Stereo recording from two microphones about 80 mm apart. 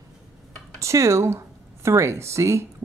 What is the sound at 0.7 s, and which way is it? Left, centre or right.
Speech, right.